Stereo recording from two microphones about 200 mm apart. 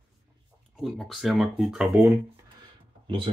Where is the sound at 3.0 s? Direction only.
25° right (ahead or behind).